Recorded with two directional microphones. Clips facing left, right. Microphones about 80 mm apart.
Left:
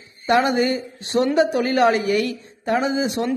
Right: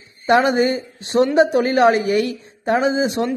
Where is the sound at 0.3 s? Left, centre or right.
Right.